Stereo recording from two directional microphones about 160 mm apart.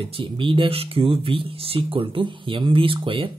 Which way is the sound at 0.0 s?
35° right (ahead or behind).